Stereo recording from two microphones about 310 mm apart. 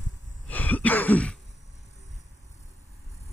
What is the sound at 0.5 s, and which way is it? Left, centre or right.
Throat clearing, centre.